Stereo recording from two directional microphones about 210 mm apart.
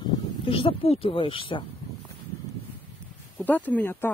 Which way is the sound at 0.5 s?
25° left (ahead or behind).